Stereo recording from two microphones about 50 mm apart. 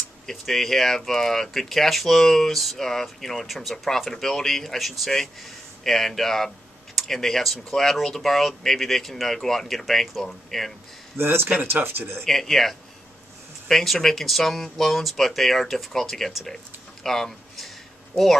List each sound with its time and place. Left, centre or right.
0.3 s speech: centre
11.1 s speech: right
12.3 s speech: centre
17.0 s a sound: centre